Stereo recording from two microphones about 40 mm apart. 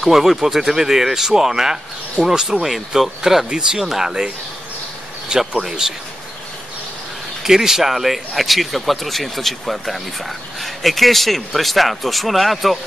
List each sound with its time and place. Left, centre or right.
0.0 s speech: centre
3.4 s speech: centre
5.6 s speech: centre
7.4 s speech: centre